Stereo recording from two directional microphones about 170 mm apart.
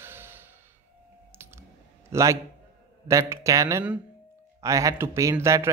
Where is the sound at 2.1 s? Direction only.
15° right (ahead or behind).